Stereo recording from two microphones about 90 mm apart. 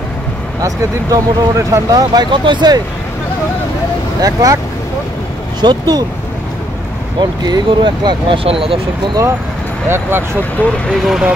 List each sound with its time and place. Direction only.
0.6 s speech: 40° right (ahead or behind)
2.3 s speech: 60° right (ahead or behind)
4.2 s speech: 40° right (ahead or behind)
5.6 s speech: 50° right (ahead or behind)
7.2 s speech: 55° right (ahead or behind)
8.5 s speech: 85° right
9.8 s speech: 25° right (ahead or behind)
10.9 s speech: 5° right (ahead or behind)